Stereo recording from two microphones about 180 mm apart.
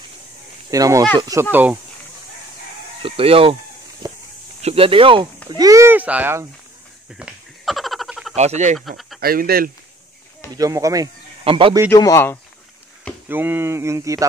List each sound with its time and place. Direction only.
0.7 s speech: 20° right (ahead or behind)
3.0 s speech: 30° right (ahead or behind)
4.0 s a sound: 20° right (ahead or behind)
4.6 s speech: 35° right (ahead or behind)
5.5 s speech: 20° right (ahead or behind)
7.1 s a sound: 5° right (ahead or behind)
8.4 s speech: 40° right (ahead or behind)
8.7 s speech: centre (ahead or behind)
9.2 s speech: 55° right (ahead or behind)
10.5 s speech: 20° right (ahead or behind)
11.9 s speech: 15° left (ahead or behind)
13.3 s speech: 10° right (ahead or behind)